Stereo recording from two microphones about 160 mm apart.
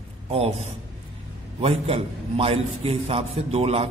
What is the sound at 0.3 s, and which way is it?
A man's voice, 40° right (ahead or behind).